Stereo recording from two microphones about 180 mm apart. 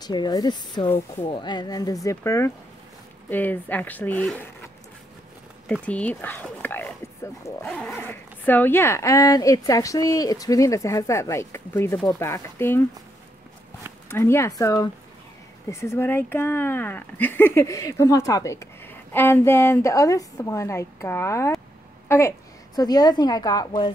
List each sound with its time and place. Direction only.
0.0 s a woman's voice: 25° left (ahead or behind); by 4.4 s 5° left (ahead or behind)
5.7 s speech: 5° left (ahead or behind)
7.6 s horse: 5° left (ahead or behind)
8.1 s speech: 10° left (ahead or behind)
14.0 s speech: 15° left (ahead or behind)
22.0 s a sound: 15° left (ahead or behind)
22.8 s a woman's voice: 20° left (ahead or behind)